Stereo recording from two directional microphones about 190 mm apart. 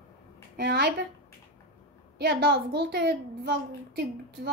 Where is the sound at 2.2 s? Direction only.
60° right (ahead or behind).